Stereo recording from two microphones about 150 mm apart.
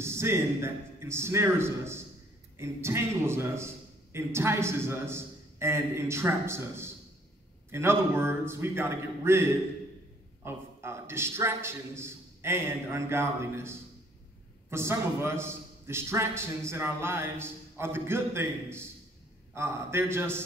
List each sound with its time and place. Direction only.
0.0 s a man's voice: 15° right (ahead or behind)